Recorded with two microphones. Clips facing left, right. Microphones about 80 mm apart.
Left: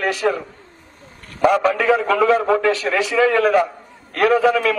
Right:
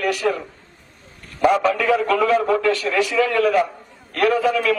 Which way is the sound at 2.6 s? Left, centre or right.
Left.